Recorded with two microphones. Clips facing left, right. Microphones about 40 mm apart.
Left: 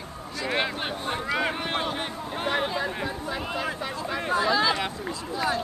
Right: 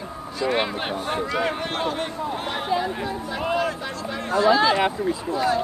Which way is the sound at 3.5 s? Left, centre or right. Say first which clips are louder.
Right 4 dB; centre.